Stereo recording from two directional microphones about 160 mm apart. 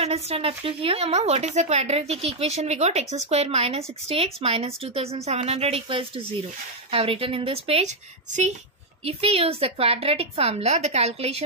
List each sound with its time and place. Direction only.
0.0 s a woman's voice: 40° right (ahead or behind)